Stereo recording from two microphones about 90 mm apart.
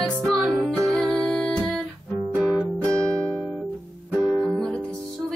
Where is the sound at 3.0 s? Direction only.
10° left (ahead or behind).